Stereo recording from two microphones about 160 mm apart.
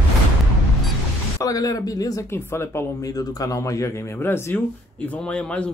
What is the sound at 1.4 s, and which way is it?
Speech, 25° left (ahead or behind).